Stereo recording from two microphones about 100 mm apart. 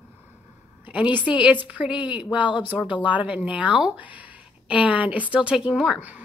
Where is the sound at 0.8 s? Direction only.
15° right (ahead or behind).